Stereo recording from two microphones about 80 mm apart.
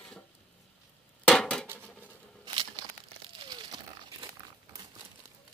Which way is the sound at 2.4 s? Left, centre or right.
Right.